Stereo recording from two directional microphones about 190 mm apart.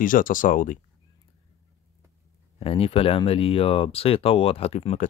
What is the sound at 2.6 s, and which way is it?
Speech, 30° left (ahead or behind).